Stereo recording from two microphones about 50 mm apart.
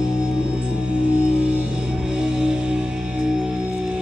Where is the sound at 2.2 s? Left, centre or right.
Centre.